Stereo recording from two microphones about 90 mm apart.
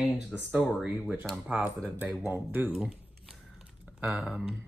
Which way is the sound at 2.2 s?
20° right (ahead or behind).